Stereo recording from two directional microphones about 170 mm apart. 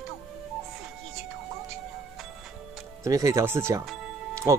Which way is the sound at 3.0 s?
20° right (ahead or behind).